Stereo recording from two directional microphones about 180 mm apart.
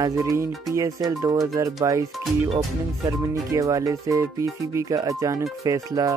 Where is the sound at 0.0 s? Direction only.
20° right (ahead or behind).